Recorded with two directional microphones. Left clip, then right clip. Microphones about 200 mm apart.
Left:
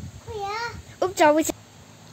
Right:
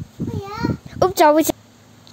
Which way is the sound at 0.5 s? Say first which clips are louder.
Right 5 dB; 25° right (ahead or behind).